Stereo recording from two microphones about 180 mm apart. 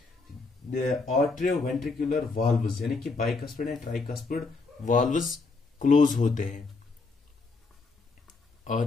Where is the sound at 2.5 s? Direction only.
Centre (ahead or behind).